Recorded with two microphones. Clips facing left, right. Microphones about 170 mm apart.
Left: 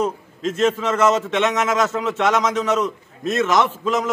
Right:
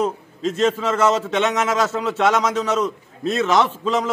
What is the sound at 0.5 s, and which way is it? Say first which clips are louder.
Speech: even; 35° right (ahead or behind).